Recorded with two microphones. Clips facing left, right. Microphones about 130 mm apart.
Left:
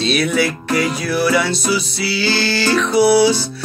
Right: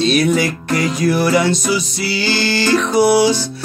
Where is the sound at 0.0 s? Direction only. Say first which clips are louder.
Right 3 dB; 45° right (ahead or behind).